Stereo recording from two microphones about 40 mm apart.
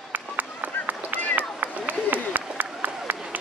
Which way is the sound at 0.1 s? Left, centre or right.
Right.